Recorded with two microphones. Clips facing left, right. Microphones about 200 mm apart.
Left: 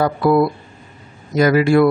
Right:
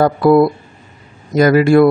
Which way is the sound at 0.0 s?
45° right (ahead or behind).